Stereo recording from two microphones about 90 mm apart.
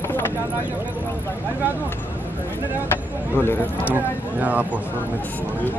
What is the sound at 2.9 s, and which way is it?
Speech, 25° left (ahead or behind).